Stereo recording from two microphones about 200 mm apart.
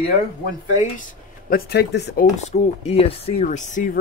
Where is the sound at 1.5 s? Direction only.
50° left (ahead or behind).